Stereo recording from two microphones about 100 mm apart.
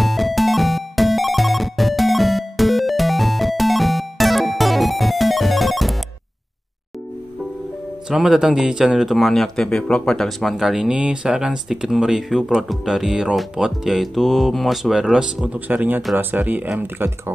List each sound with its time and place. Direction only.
0.0 s music: centre (ahead or behind)
8.1 s a man's voice: 5° right (ahead or behind)